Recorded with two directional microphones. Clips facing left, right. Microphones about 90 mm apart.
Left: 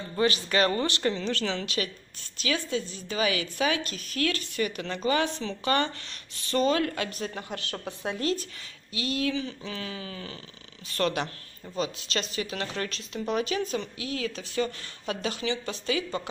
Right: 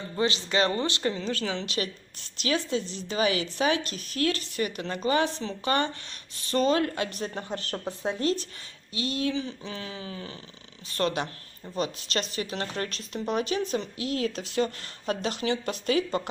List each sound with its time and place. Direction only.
0.2 s speech: 25° right (ahead or behind)
2.4 s speech: 30° right (ahead or behind)
6.7 s speech: 30° right (ahead or behind)
11.7 s speech: 45° right (ahead or behind)